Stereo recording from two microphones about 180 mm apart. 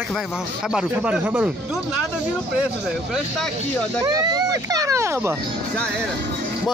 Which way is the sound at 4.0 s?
20° right (ahead or behind).